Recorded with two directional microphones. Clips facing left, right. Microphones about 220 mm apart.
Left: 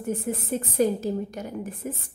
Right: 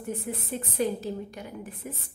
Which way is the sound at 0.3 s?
45° left (ahead or behind).